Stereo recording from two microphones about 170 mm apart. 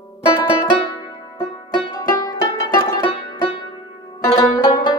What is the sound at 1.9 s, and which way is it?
Music, 25° left (ahead or behind).